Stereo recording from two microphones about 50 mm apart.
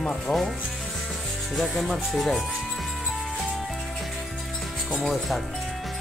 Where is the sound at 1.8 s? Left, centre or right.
Centre.